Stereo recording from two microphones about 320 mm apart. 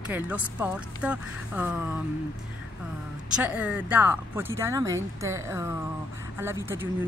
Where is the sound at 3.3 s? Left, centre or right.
Centre.